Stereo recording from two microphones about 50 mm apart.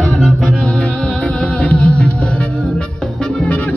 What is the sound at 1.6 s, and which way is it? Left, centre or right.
Music, left.